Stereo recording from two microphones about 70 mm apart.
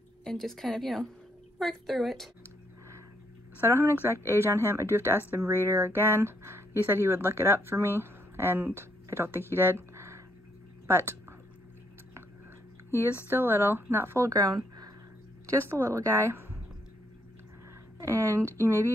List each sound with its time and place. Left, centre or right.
0.2 s speech: centre
3.6 s speech: right
12.9 s speech: right
18.0 s speech: right